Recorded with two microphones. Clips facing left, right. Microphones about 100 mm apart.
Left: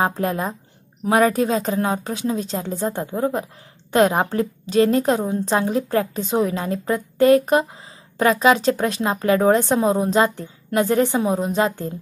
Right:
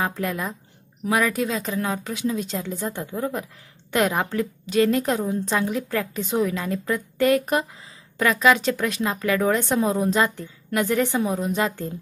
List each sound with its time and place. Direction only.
0.0 s a woman's voice: 35° left (ahead or behind)